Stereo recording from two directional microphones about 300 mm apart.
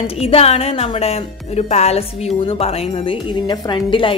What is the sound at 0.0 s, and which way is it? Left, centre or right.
Speech, centre.